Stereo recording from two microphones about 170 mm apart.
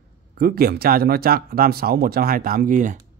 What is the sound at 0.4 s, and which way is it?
Speech, 60° right (ahead or behind).